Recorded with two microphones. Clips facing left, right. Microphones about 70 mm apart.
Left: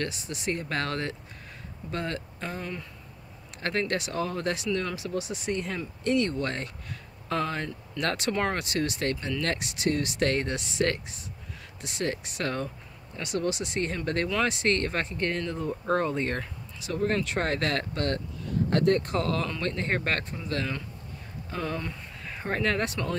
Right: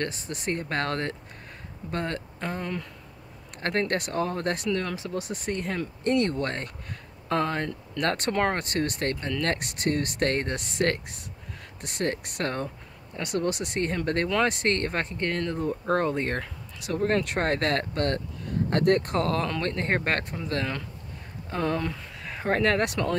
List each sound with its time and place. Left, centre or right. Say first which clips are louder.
0.0 s speech: right 1 dB; right
6.0 s speech: right 1 dB; right
18.9 s speech: right 5 dB; right